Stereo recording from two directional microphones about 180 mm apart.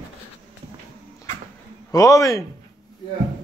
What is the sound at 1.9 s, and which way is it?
Speech, 20° left (ahead or behind).